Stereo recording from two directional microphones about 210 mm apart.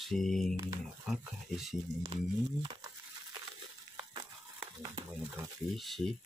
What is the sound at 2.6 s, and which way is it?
Speech, 20° right (ahead or behind).